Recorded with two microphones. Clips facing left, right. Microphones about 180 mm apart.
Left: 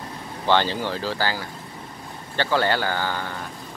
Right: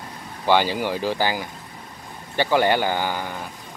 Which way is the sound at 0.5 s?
10° right (ahead or behind).